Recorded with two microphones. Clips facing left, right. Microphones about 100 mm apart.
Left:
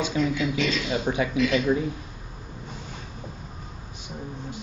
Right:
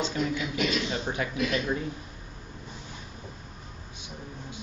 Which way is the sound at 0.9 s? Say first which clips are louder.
Left 6 dB; 15° left (ahead or behind).